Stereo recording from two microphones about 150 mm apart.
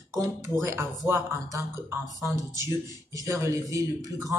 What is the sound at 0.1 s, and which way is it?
Speech, 20° right (ahead or behind).